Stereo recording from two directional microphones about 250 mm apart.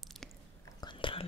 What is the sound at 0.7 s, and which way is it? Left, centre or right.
Whispering, centre.